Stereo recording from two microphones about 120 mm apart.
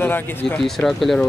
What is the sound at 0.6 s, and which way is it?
Speech, centre (ahead or behind).